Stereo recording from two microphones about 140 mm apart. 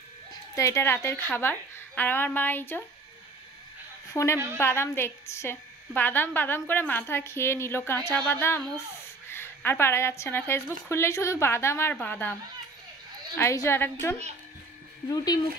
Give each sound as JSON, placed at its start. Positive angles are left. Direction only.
{"t": 0.3, "sound": "a woman's voice", "side_deg": 20}
{"t": 4.1, "sound": "a woman's voice", "side_deg": 20}
{"t": 13.4, "sound": "a woman's voice", "side_deg": 15}
{"t": 15.0, "sound": "speech", "side_deg": 25}